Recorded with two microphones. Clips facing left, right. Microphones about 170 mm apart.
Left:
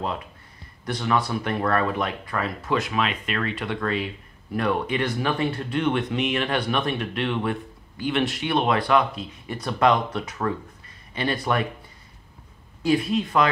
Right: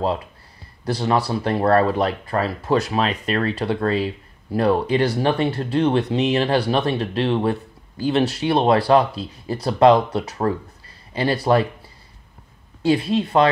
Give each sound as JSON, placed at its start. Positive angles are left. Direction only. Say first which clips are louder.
{"t": 0.8, "sound": "speech", "louder": "right 4 dB", "side_deg": -35}
{"t": 12.8, "sound": "speech", "louder": "right 3 dB", "side_deg": -30}